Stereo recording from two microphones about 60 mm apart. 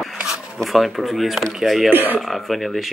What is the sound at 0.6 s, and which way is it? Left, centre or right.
Speech, centre.